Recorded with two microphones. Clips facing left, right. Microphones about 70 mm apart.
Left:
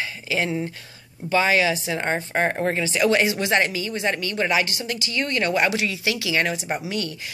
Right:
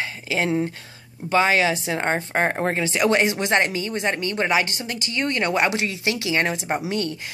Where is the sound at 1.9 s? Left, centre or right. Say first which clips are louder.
Right 1 dB; right.